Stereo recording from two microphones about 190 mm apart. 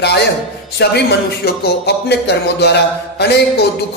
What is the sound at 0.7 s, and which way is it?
A man's voice, 60° left (ahead or behind).